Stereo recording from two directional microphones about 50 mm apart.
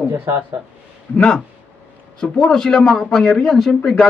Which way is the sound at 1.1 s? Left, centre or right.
Centre.